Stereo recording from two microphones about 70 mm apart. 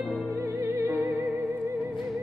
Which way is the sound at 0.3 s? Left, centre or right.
Right.